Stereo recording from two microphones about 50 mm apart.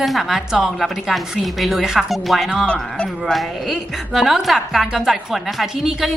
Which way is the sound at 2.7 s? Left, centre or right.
Centre.